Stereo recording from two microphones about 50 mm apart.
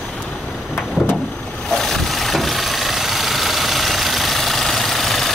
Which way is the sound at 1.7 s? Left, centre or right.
Centre.